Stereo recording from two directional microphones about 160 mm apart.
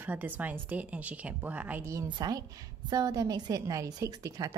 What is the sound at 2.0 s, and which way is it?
A woman's voice, 25° right (ahead or behind).